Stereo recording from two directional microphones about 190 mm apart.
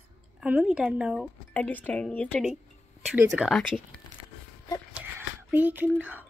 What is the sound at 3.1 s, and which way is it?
Speech, 5° right (ahead or behind).